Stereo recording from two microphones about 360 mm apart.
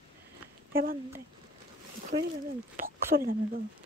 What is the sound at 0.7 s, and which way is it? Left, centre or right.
Speech, right.